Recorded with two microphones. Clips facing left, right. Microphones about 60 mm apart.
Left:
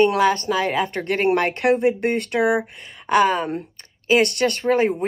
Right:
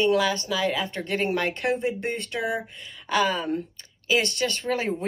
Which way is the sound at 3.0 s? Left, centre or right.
Left.